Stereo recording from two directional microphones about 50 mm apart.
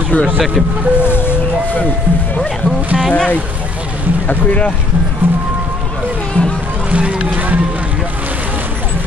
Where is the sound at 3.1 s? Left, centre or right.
Left.